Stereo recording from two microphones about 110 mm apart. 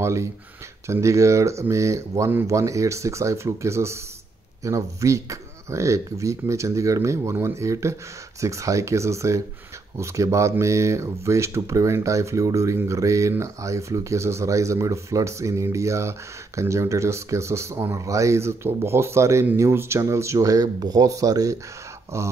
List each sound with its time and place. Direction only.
0.0 s speech: 25° right (ahead or behind)